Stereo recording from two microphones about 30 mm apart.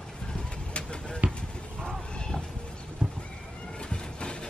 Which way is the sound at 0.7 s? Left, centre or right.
Left.